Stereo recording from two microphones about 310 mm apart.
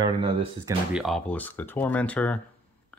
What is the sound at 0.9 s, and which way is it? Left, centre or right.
Speech, centre.